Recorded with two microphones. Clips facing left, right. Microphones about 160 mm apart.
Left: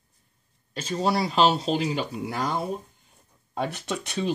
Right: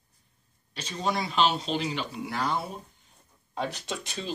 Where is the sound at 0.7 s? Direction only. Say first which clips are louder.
Left 5 dB; 40° left (ahead or behind).